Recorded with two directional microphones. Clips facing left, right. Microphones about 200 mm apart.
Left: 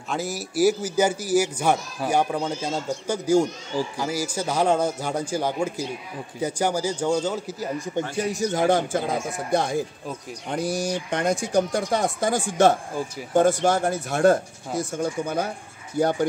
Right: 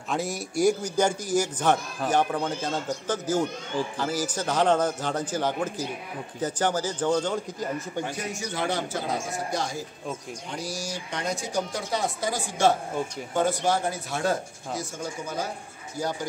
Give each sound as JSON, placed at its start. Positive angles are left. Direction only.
{"t": 0.1, "sound": "a man's voice", "side_deg": 0}
{"t": 8.2, "sound": "speech", "side_deg": 40}